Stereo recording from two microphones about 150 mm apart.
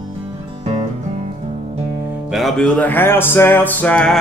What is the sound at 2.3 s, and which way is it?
Music, centre (ahead or behind).